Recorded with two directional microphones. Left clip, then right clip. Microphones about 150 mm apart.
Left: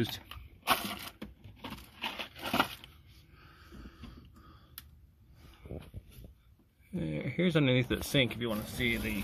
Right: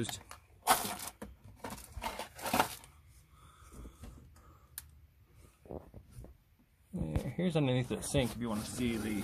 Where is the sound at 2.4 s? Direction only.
30° right (ahead or behind).